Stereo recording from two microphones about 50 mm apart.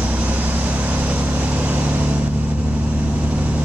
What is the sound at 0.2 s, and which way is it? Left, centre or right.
Vehicle, right.